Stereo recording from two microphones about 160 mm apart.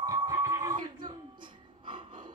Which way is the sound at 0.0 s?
25° right (ahead or behind).